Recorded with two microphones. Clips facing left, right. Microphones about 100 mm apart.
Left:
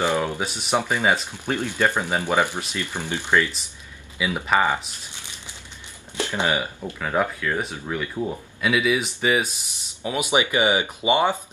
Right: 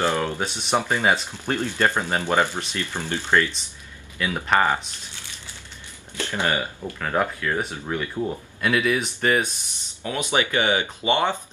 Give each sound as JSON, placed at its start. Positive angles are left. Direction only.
{"t": 0.0, "sound": "speech", "side_deg": 15}
{"t": 0.5, "sound": "speech", "side_deg": 5}
{"t": 0.7, "sound": "speech", "side_deg": 15}
{"t": 5.1, "sound": "crumpling", "side_deg": 20}
{"t": 6.1, "sound": "speech", "side_deg": 20}
{"t": 7.0, "sound": "speech", "side_deg": 0}
{"t": 10.0, "sound": "speech", "side_deg": 15}